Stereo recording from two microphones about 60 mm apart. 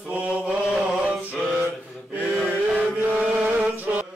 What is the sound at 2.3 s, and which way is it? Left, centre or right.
Chant, centre.